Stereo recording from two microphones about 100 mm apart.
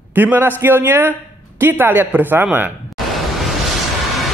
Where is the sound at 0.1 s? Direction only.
20° right (ahead or behind).